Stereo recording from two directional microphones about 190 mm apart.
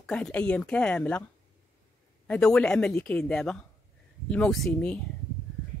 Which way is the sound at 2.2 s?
5° left (ahead or behind).